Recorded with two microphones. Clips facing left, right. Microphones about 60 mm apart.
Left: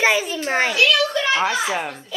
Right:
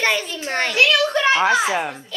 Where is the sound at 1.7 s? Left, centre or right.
Centre.